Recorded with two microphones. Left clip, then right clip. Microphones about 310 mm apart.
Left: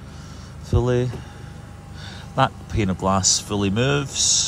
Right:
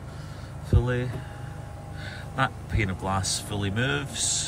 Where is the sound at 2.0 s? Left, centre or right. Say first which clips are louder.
Left 7 dB; centre.